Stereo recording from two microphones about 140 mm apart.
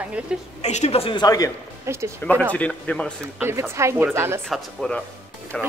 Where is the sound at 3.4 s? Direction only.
15° right (ahead or behind).